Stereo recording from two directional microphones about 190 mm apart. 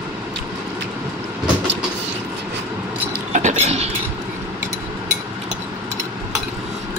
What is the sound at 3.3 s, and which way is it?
Cutlery, 40° right (ahead or behind).